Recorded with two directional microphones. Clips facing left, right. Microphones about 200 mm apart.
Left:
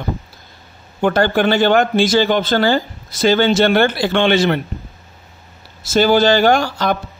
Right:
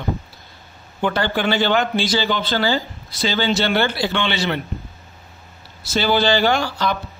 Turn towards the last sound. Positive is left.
turn(degrees=50)  # may be behind; listen again after turning